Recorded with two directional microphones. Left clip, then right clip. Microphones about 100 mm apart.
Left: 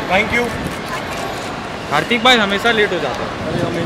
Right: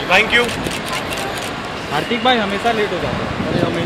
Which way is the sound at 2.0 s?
70° left (ahead or behind).